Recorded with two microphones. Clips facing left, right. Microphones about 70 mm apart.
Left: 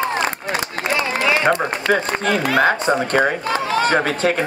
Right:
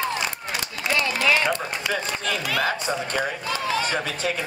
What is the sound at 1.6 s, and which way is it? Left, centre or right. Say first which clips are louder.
Speech: left 8 dB; left.